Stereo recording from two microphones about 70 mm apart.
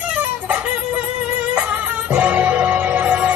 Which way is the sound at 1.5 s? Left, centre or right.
Centre.